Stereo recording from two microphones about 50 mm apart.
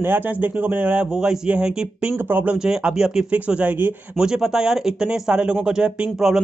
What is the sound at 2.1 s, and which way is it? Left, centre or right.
Speech, right.